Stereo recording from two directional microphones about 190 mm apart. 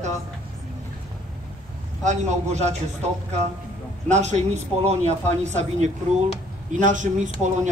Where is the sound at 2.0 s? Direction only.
35° right (ahead or behind).